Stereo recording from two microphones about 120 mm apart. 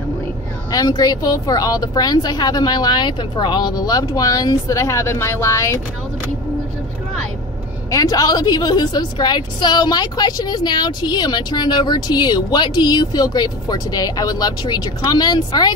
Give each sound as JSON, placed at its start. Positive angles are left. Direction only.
{"t": 0.7, "sound": "a woman's voice", "side_deg": 30}
{"t": 7.9, "sound": "a woman's voice", "side_deg": 30}